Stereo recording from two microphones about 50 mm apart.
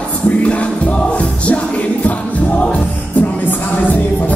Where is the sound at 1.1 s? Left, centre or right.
Left.